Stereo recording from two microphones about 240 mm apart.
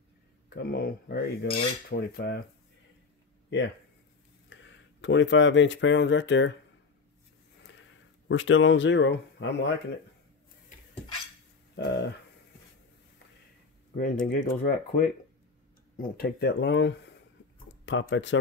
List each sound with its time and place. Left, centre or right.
0.5 s speech: left
3.4 s speech: left
8.3 s speech: left
11.7 s a sound: left
13.9 s speech: left